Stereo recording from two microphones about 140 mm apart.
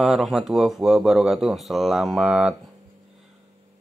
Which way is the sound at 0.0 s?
5° right (ahead or behind).